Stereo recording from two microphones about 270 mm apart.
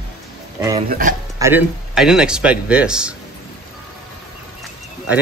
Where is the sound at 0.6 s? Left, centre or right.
Centre.